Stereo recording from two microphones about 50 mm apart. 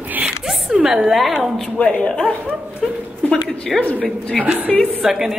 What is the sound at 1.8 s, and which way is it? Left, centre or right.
Speech, left.